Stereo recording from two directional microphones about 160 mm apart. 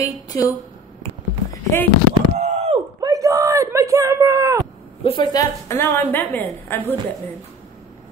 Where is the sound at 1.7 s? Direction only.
15° left (ahead or behind).